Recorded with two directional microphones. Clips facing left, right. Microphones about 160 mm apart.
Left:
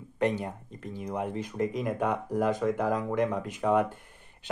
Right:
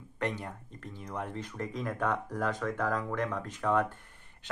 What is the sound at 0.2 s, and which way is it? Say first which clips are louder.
Speech: left 7 dB; 20° left (ahead or behind).